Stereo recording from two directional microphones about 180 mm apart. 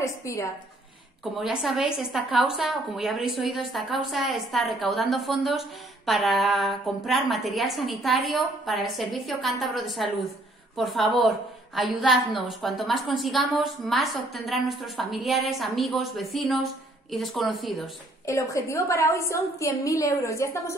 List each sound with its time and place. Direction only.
0.0 s a woman's voice: 15° left (ahead or behind)
1.4 s a woman's voice: centre (ahead or behind)
18.2 s a woman's voice: 15° left (ahead or behind)